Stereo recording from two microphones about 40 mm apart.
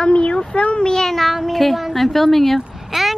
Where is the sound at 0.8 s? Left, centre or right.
Centre.